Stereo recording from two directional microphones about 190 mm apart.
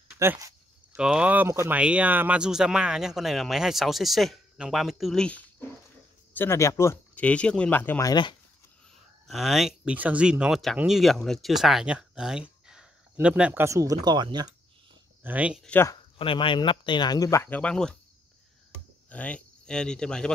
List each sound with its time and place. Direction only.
0.2 s speech: 15° right (ahead or behind); by 8.1 s 10° left (ahead or behind)
8.1 s speech: 25° left (ahead or behind)
9.3 s speech: centre (ahead or behind); by 14.5 s 25° right (ahead or behind)
15.2 s speech: 5° right (ahead or behind)
15.6 s speech: 10° left (ahead or behind)
16.2 s speech: 25° left (ahead or behind); by 17.9 s 5° left (ahead or behind)
19.0 s speech: 5° left (ahead or behind)